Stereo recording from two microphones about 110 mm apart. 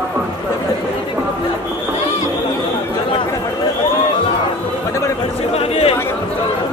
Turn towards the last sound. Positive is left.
turn(degrees=65)  # may be behind; listen again after turning